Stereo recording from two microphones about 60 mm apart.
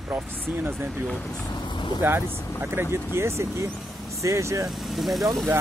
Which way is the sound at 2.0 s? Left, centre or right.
Right.